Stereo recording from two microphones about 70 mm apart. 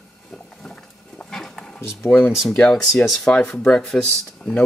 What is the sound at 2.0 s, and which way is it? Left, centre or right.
Speech, centre.